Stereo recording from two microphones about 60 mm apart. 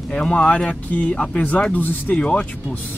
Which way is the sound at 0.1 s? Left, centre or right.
Centre.